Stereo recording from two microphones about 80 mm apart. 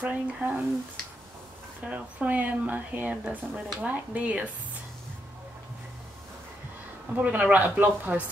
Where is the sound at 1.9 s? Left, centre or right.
Centre.